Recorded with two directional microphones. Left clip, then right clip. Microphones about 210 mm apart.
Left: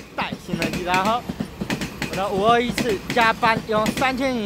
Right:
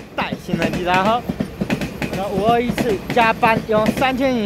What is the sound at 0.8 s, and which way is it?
Speech, centre (ahead or behind).